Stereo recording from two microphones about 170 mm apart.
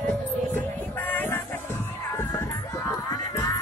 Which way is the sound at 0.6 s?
10° left (ahead or behind).